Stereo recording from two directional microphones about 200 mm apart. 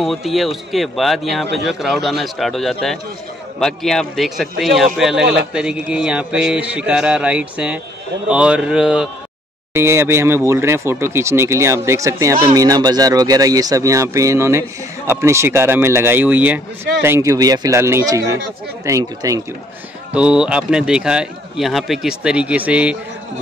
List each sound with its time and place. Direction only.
0.0 s a man's voice: centre (ahead or behind); by 19.4 s 15° right (ahead or behind)
20.2 s a man's voice: 5° right (ahead or behind)